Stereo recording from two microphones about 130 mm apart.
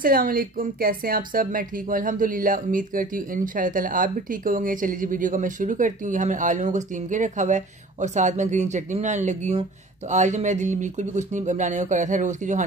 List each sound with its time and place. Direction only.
0.0 s a woman's voice: 90° right; by 12.6 s 70° right (ahead or behind)